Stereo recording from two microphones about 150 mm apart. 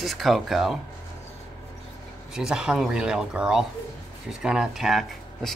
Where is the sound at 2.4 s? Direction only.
5° right (ahead or behind).